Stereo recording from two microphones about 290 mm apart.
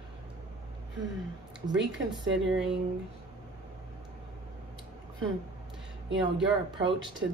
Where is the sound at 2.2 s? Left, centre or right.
Right.